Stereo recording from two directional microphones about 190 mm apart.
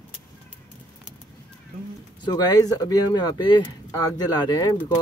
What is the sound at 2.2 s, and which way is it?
Speech, 20° left (ahead or behind).